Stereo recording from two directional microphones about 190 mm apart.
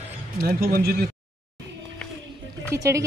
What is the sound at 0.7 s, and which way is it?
Speech, 55° right (ahead or behind).